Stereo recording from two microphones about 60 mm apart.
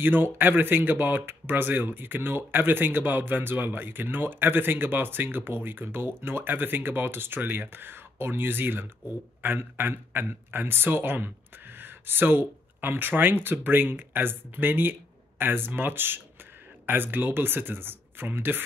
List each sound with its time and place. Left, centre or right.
0.0 s speech: right